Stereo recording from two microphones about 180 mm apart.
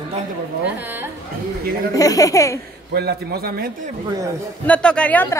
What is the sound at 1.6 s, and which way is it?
Speech, 55° right (ahead or behind).